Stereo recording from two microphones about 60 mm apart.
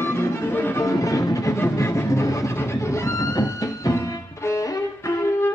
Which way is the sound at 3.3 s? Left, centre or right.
Left.